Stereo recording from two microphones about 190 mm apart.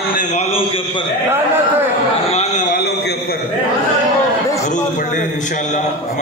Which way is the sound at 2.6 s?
55° left (ahead or behind).